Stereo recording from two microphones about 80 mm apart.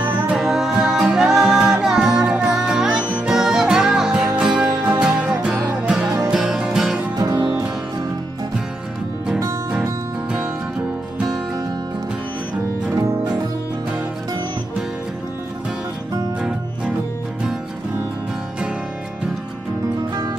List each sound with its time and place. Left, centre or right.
0.4 s music: centre
3.0 s music: centre
3.3 s music: centre
7.2 s music: right
12.9 s music: right
16.3 s music: centre